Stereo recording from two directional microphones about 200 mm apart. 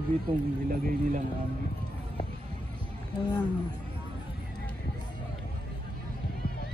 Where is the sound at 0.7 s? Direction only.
45° right (ahead or behind).